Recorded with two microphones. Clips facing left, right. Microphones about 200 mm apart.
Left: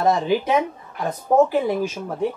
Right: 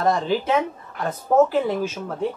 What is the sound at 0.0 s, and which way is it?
Speech, 10° left (ahead or behind).